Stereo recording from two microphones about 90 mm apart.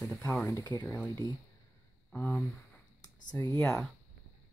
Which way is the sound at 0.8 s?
15° left (ahead or behind).